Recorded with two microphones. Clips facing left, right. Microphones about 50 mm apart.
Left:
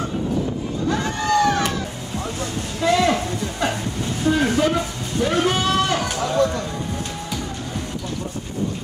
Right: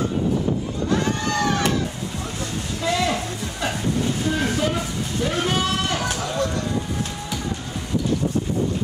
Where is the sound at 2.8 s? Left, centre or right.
Centre.